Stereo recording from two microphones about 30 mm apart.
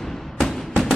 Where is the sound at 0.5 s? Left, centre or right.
Centre.